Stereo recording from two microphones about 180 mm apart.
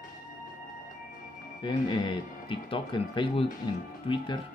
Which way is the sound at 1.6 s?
25° left (ahead or behind).